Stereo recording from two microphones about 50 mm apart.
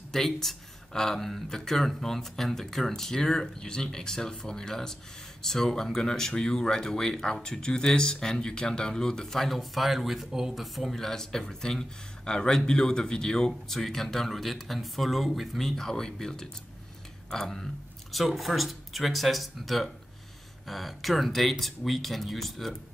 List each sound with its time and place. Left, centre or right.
0.1 s speech: centre
18.1 s speech: centre